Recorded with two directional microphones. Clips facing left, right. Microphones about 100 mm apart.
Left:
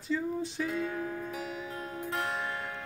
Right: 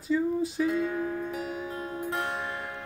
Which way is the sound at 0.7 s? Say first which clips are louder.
Right 5 dB; 25° right (ahead or behind).